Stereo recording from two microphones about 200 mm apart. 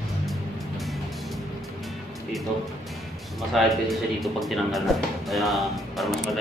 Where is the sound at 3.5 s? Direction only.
Centre (ahead or behind).